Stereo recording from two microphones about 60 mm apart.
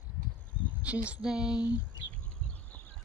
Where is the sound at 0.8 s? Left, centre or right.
Right.